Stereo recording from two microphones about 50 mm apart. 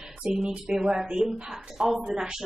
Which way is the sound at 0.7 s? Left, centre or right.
Centre.